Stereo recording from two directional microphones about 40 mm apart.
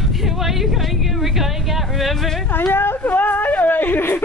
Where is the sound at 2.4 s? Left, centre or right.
Left.